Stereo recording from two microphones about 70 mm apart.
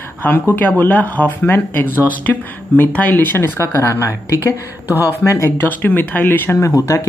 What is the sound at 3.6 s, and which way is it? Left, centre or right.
Speech, left.